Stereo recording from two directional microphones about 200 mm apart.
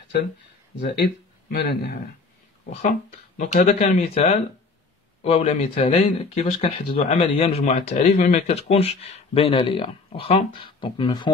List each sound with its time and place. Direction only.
0.7 s speech: 55° left (ahead or behind)
2.7 s speech: 40° left (ahead or behind)